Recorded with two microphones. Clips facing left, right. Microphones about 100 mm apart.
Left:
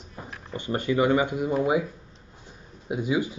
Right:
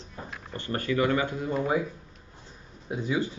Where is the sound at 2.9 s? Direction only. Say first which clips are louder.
Left 3 dB; 15° left (ahead or behind).